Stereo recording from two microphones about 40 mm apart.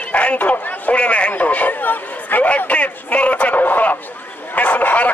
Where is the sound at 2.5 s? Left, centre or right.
Left.